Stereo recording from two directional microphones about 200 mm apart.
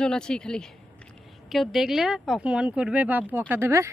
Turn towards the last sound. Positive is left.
turn(degrees=-15)  # may be behind; listen again after turning